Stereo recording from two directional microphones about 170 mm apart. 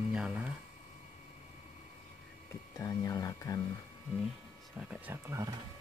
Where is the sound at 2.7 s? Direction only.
20° left (ahead or behind).